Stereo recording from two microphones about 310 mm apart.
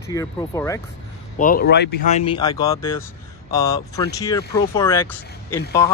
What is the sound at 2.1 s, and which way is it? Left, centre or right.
Speech, centre.